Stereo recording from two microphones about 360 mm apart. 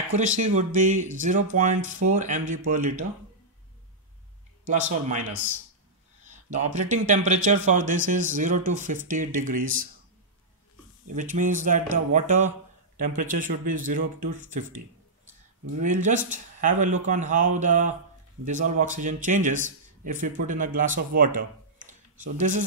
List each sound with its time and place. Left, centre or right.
0.1 s speech: centre
4.6 s speech: centre
6.5 s speech: centre
11.1 s speech: right
15.8 s speech: centre